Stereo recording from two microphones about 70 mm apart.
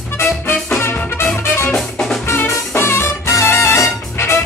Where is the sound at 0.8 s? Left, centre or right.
Left.